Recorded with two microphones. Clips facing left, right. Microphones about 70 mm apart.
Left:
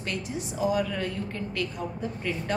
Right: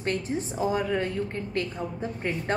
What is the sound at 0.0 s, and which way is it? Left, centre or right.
A woman's voice, right.